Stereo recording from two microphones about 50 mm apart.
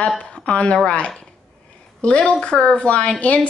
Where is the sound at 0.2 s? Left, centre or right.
Left.